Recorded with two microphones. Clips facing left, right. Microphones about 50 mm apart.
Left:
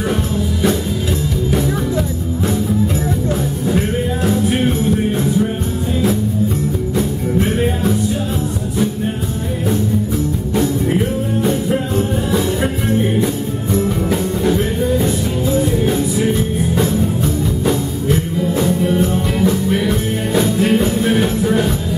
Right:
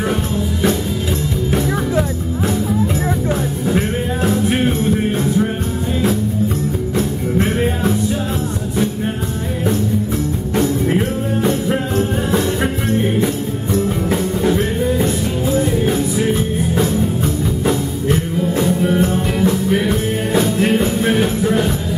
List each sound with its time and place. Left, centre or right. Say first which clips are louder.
1.5 s music: right 1 dB; right
14.1 s music: right 1 dB; centre
19.9 s music: even; centre